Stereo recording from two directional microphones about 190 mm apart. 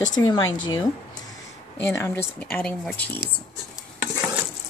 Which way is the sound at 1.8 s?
10° left (ahead or behind).